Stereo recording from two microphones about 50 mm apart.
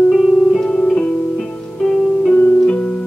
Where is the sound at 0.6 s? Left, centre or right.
Centre.